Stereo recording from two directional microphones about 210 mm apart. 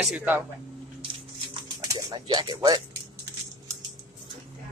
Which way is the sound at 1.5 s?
15° right (ahead or behind).